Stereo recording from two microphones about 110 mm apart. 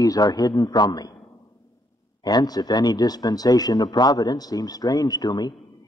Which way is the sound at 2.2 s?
40° left (ahead or behind).